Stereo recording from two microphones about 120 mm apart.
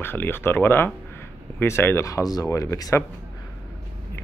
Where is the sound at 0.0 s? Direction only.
20° left (ahead or behind).